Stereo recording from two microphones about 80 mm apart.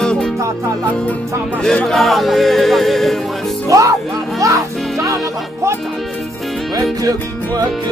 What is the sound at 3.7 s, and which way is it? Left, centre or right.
Music, right.